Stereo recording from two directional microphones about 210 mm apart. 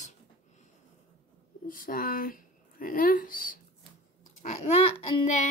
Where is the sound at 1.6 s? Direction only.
40° left (ahead or behind).